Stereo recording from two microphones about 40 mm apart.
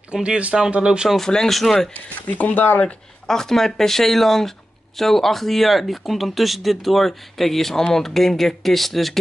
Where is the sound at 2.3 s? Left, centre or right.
Left.